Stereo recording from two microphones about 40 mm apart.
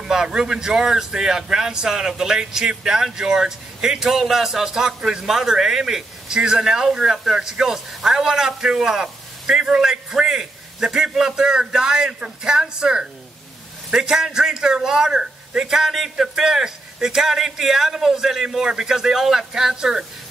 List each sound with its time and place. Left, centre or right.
0.1 s a man's voice: centre